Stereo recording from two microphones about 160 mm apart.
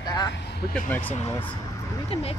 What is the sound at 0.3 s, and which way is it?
Vehicle, 90° left.